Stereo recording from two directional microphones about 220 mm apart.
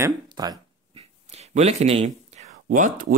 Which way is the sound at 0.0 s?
20° right (ahead or behind).